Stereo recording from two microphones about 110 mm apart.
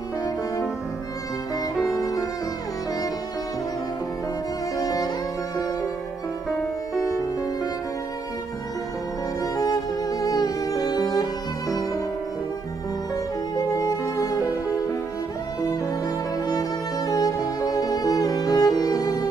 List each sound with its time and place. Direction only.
2.0 s music: 35° left (ahead or behind)
4.7 s music: 35° left (ahead or behind)
7.0 s music: 30° left (ahead or behind)
9.4 s music: 35° left (ahead or behind)
13.6 s music: 30° left (ahead or behind)
16.4 s music: 35° left (ahead or behind)